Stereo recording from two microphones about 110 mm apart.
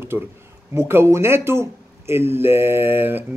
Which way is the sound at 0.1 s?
20° right (ahead or behind).